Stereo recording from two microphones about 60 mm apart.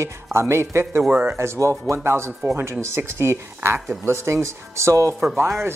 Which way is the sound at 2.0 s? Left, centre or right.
Right.